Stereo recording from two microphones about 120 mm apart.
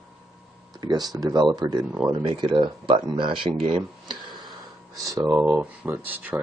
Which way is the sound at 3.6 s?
45° right (ahead or behind).